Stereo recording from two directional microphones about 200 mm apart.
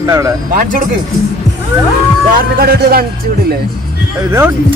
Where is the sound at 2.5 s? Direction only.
50° right (ahead or behind).